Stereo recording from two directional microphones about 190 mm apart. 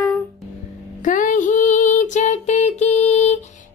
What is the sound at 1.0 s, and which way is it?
Music, 45° left (ahead or behind).